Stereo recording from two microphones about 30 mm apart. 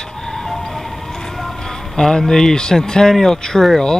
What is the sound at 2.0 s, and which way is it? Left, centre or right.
Speech, centre.